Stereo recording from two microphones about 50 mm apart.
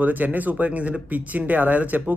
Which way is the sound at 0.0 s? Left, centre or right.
Right.